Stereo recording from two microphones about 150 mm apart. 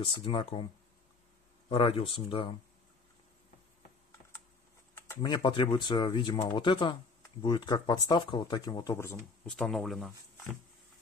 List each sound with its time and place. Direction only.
0.0 s speech: 35° left (ahead or behind)
1.7 s speech: 35° left (ahead or behind)
4.9 s typing: 15° left (ahead or behind)
5.2 s speech: 30° left (ahead or behind)
9.5 s speech: centre (ahead or behind)